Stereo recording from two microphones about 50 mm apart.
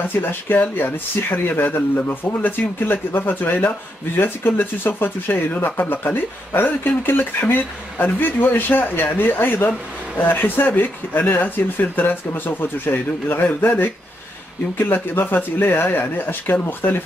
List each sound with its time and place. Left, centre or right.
0.1 s speech: left